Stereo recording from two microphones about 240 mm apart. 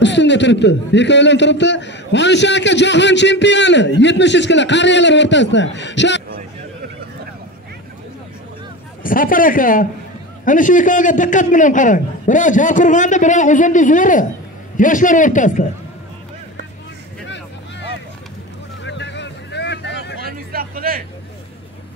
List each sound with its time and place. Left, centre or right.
0.0 s a man's voice: left
9.0 s a man's voice: left
17.3 s vehicle: left
20.2 s a sound: right